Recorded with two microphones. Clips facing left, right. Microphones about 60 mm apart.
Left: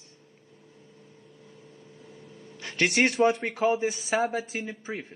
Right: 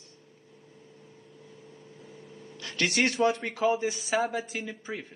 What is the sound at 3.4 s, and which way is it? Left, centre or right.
Speech, centre.